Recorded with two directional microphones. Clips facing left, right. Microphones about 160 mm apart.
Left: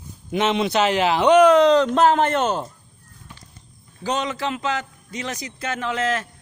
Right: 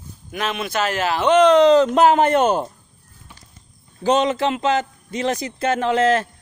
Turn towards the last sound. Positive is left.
turn(degrees=-30)  # may be behind; listen again after turning